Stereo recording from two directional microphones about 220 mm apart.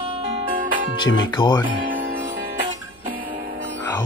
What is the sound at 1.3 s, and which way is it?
Speech, 20° left (ahead or behind).